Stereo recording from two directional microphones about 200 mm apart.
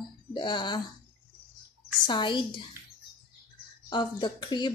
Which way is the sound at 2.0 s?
25° left (ahead or behind).